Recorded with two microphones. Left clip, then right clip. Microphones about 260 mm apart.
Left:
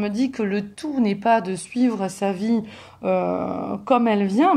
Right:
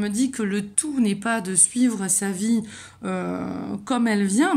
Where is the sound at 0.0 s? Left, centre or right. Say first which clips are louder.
Left 1 dB; right.